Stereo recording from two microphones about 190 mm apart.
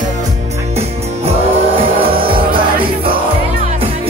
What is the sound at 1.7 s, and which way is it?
Music, 30° right (ahead or behind).